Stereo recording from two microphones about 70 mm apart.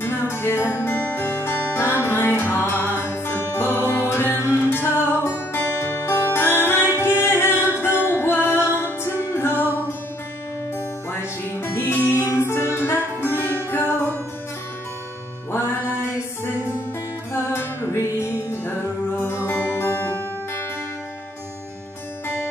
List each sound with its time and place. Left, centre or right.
0.0 s music: left
11.7 s music: left
17.3 s music: left